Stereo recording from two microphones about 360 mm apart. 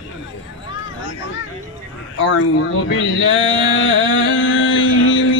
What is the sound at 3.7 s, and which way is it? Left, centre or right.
Music, left.